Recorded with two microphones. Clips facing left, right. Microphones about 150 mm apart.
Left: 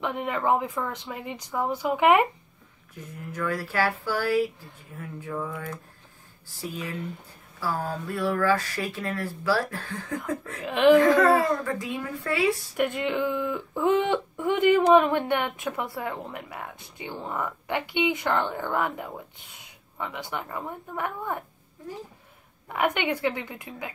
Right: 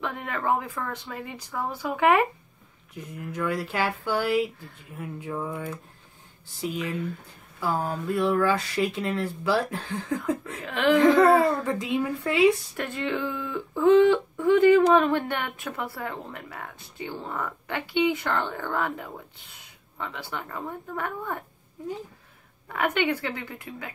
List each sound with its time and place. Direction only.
0.0 s a woman's voice: 15° left (ahead or behind)
3.3 s speech: 20° right (ahead or behind)
7.6 s speech: 20° right (ahead or behind)
10.6 s a woman's voice: 15° left (ahead or behind)
11.0 s speech: 20° right (ahead or behind)
12.7 s a woman's voice: 15° left (ahead or behind)
20.0 s a woman's voice: 15° left (ahead or behind)
22.7 s a woman's voice: 15° left (ahead or behind)